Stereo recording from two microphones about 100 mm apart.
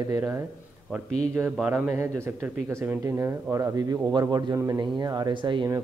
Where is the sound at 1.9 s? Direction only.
25° right (ahead or behind); by 5.7 s 55° right (ahead or behind).